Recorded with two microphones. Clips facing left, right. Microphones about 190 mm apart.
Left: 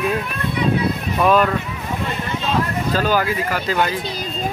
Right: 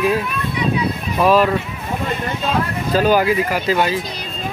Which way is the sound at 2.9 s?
15° right (ahead or behind).